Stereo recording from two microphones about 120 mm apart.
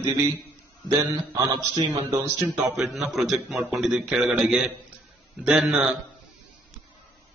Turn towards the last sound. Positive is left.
turn(degrees=-5)  # may be behind; listen again after turning